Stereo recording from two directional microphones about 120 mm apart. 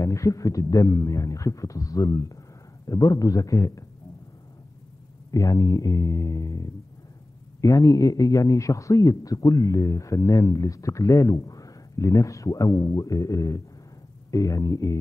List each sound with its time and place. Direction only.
0.0 s a man's voice: 25° left (ahead or behind)
5.3 s a man's voice: 30° left (ahead or behind)